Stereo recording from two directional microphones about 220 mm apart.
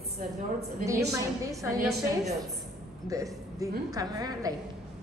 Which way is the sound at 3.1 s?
15° right (ahead or behind).